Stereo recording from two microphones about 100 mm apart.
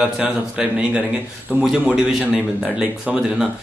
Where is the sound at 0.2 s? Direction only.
15° right (ahead or behind).